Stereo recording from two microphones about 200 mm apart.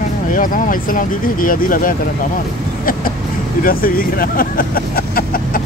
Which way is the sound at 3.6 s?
45° left (ahead or behind).